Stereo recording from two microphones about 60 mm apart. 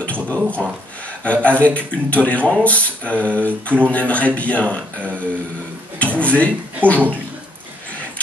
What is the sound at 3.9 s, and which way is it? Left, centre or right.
A man's voice, left.